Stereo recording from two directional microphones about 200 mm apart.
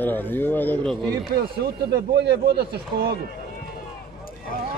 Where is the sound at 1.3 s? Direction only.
55° right (ahead or behind).